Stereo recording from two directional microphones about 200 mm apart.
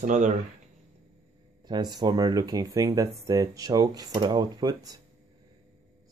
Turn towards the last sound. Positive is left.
turn(degrees=-20)  # may be behind; listen again after turning